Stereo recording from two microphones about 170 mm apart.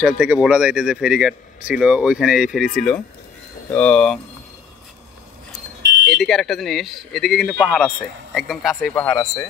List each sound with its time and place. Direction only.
0.0 s speech: 5° right (ahead or behind)
6.0 s speech: centre (ahead or behind)